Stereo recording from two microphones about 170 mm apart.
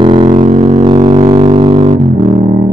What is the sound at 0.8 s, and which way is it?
Music, 30° right (ahead or behind).